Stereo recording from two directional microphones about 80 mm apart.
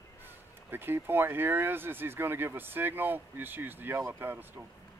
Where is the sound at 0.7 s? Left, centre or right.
Right.